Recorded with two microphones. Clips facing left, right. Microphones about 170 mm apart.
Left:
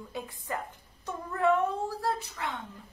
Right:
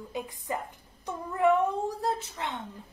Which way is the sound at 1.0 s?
15° right (ahead or behind).